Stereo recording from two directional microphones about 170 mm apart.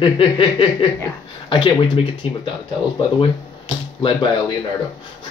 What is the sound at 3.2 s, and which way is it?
Speech, 30° left (ahead or behind).